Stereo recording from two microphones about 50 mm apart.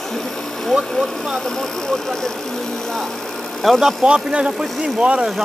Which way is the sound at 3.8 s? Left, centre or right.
Centre.